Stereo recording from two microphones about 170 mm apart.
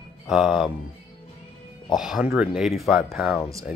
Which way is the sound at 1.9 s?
5° right (ahead or behind).